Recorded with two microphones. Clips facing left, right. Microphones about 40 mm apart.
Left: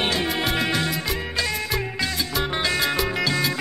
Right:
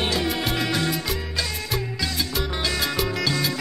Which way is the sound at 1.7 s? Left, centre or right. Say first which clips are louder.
Left 1 dB; left.